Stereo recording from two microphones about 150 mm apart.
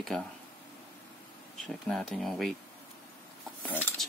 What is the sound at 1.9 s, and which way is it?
Speech, 5° left (ahead or behind).